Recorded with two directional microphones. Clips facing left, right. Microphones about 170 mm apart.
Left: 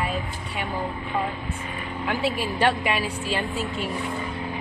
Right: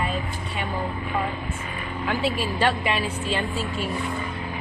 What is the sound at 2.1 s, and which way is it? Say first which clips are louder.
A woman's voice: right 1 dB; 15° left (ahead or behind).